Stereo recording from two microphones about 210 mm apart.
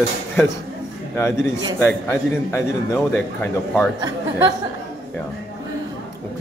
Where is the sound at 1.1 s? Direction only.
10° left (ahead or behind).